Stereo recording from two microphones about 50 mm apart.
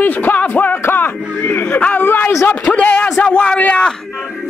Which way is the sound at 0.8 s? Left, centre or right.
Left.